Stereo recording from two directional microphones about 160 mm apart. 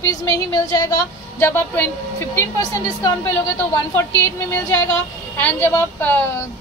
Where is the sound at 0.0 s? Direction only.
20° left (ahead or behind).